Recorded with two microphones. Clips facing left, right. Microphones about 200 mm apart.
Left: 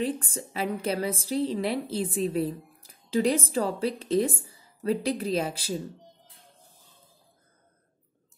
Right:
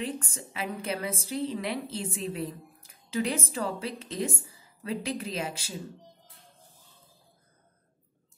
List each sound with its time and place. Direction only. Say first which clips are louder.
0.0 s a woman's voice: left 5 dB; 35° left (ahead or behind)